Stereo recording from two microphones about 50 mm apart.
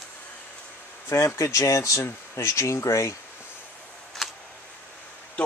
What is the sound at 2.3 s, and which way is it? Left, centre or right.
Speech, left.